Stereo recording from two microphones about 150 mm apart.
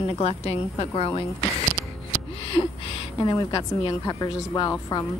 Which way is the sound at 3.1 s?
25° left (ahead or behind).